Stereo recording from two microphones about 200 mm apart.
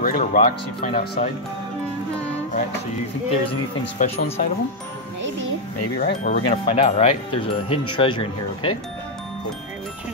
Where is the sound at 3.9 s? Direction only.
30° left (ahead or behind).